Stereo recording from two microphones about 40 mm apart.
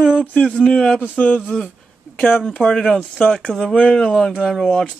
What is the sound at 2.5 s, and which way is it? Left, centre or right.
Speech, left.